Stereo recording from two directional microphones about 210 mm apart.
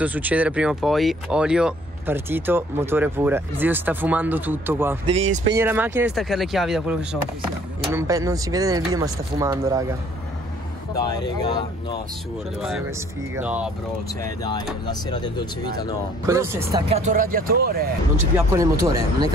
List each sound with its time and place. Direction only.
0.0 s speech: 5° right (ahead or behind)
7.9 s speech: 15° right (ahead or behind)
11.0 s speech: 20° left (ahead or behind)
13.4 s speech: 5° right (ahead or behind)
14.4 s speech: 20° left (ahead or behind)
16.3 s speech: 15° right (ahead or behind)
16.9 s speech: 35° right (ahead or behind)
18.6 s speech: 15° right (ahead or behind)